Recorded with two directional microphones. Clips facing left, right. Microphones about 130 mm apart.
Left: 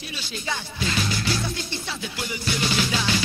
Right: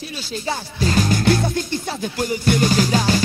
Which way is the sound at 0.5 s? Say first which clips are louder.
Right 6 dB; 40° right (ahead or behind).